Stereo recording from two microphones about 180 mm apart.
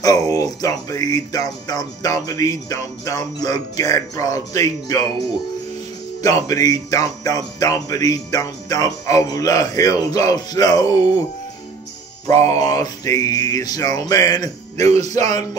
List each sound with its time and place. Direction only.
0.0 s speech: 20° left (ahead or behind)
6.2 s speech: 20° left (ahead or behind)
12.6 s speech: 20° left (ahead or behind)